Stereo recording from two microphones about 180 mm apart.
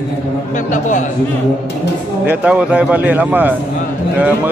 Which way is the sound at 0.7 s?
45° left (ahead or behind).